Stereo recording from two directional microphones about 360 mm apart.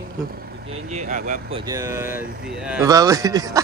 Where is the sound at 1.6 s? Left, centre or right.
Centre.